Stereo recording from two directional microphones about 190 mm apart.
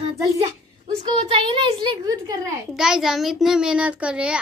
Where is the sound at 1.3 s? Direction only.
25° right (ahead or behind).